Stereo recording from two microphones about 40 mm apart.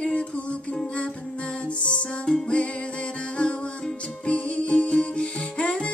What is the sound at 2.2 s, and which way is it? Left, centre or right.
Music, left.